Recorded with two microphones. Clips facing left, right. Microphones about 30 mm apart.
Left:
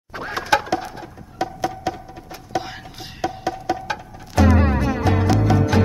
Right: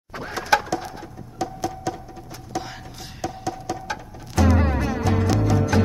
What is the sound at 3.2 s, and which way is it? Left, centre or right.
Music, left.